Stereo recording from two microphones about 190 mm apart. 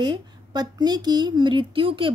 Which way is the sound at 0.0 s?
25° right (ahead or behind).